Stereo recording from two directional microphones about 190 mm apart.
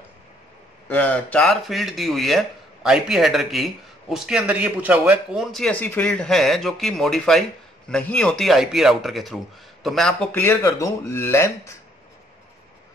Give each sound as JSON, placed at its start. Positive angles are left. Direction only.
{"t": 0.8, "sound": "speech", "side_deg": 10}